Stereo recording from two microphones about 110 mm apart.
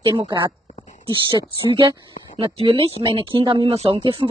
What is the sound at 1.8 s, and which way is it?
Speech, 55° right (ahead or behind).